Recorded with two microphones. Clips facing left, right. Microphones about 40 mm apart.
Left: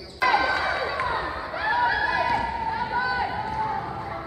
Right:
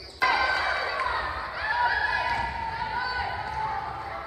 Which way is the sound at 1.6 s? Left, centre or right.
Centre.